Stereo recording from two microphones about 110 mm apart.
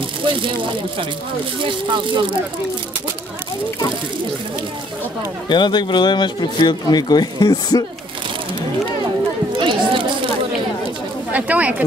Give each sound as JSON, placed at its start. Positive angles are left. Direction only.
{"t": 0.2, "sound": "a sound", "side_deg": -50}
{"t": 1.6, "sound": "speech", "side_deg": -45}
{"t": 5.5, "sound": "speech", "side_deg": 45}
{"t": 9.6, "sound": "chatter", "side_deg": -50}
{"t": 11.3, "sound": "speech", "side_deg": -15}